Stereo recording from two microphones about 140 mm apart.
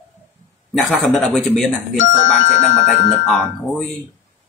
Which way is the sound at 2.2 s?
65° left (ahead or behind).